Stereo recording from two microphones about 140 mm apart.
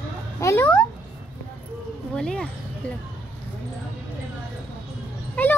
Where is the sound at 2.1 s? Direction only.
5° left (ahead or behind).